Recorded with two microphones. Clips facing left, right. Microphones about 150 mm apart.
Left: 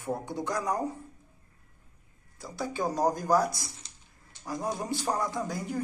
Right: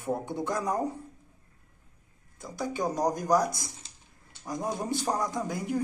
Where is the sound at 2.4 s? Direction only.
20° right (ahead or behind).